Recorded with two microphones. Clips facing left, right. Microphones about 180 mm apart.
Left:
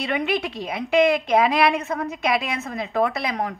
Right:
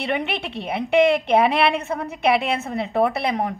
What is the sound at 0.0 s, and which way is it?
A woman's voice, 25° right (ahead or behind).